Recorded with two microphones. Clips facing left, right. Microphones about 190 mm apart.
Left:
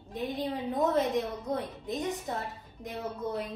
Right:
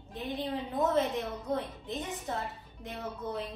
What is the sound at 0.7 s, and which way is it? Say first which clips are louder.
A woman's voice: left 2 dB; 15° left (ahead or behind).